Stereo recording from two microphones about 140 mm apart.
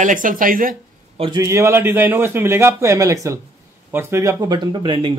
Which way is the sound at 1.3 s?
20° right (ahead or behind).